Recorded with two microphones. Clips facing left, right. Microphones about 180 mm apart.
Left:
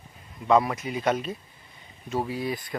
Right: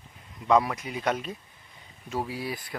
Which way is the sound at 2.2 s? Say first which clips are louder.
Left 4 dB; 10° right (ahead or behind).